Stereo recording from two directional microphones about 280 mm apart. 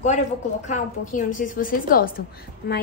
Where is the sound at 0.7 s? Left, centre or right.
Left.